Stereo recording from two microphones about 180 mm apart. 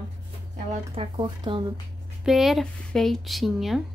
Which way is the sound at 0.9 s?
30° right (ahead or behind).